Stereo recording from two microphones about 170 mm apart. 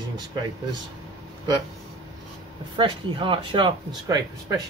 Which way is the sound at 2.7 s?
30° right (ahead or behind).